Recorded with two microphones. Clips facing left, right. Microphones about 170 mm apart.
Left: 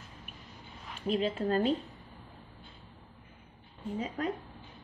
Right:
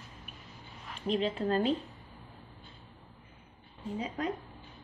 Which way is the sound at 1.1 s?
40° left (ahead or behind).